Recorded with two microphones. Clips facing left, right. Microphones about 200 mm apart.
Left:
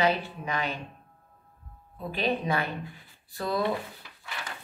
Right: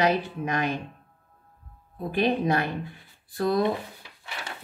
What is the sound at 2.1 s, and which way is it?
Speech, 50° right (ahead or behind).